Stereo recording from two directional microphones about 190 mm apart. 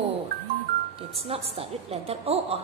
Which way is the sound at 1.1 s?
30° right (ahead or behind).